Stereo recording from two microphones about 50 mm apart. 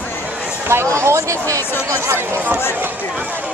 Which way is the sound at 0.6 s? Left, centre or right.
Right.